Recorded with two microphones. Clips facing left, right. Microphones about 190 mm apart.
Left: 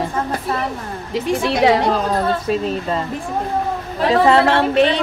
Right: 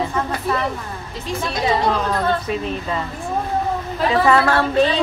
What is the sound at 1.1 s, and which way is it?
Speech, 75° left (ahead or behind).